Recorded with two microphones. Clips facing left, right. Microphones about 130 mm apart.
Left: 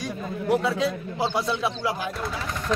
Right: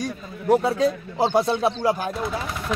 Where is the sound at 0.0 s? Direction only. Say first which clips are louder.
Right 1 dB; 40° right (ahead or behind).